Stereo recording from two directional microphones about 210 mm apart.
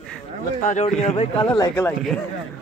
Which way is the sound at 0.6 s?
35° left (ahead or behind).